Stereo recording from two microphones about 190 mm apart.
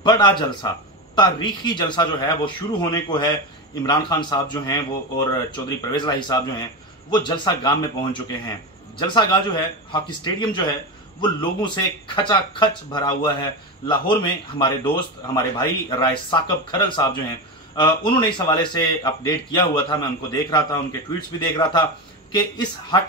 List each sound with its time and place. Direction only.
0.0 s speech: 25° left (ahead or behind)